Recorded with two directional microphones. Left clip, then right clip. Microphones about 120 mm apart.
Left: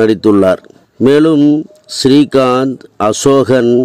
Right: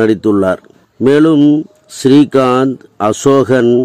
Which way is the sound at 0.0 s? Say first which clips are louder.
Left 2 dB; 35° left (ahead or behind).